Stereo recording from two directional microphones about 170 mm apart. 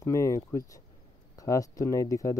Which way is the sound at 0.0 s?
15° left (ahead or behind).